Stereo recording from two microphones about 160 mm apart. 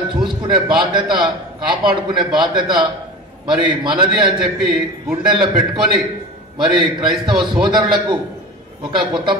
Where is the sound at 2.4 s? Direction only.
30° right (ahead or behind).